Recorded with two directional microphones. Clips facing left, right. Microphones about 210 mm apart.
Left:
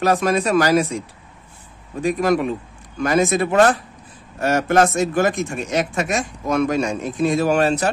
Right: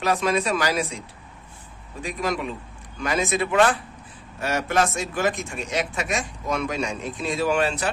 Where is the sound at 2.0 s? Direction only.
50° left (ahead or behind).